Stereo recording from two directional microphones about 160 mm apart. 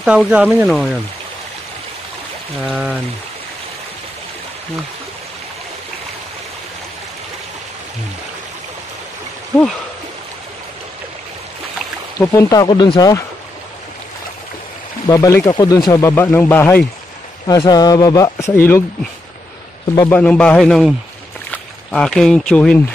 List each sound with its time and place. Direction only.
0.0 s speech: 5° right (ahead or behind)
2.7 s speech: 10° right (ahead or behind)
12.2 s speech: 20° left (ahead or behind)
12.6 s speech: 30° left (ahead or behind)
15.0 s speech: 20° left (ahead or behind)
17.5 s speech: 25° left (ahead or behind)
20.1 s speech: 10° left (ahead or behind)